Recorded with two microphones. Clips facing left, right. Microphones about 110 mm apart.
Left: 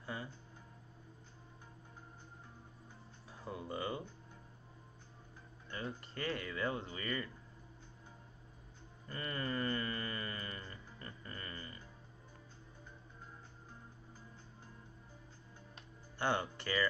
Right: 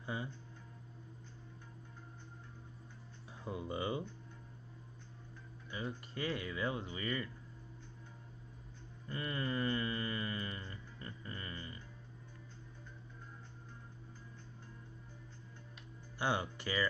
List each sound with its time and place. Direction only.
0.0 s a sound: 15° right (ahead or behind)
3.4 s speech: 15° right (ahead or behind)
5.7 s speech: 10° right (ahead or behind)
9.1 s music: 10° right (ahead or behind)
16.2 s music: 10° right (ahead or behind)